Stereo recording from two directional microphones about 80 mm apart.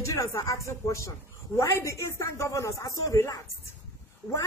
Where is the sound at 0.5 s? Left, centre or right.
Left.